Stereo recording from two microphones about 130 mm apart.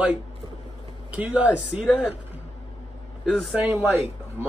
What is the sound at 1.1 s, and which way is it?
Speech, 10° right (ahead or behind).